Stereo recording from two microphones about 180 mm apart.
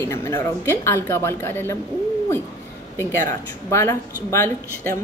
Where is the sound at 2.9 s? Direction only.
15° left (ahead or behind).